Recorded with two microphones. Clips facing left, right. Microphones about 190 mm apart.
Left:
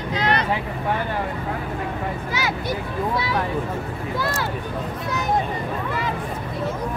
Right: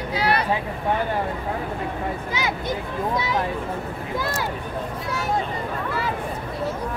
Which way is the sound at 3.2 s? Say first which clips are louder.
Even; 20° right (ahead or behind).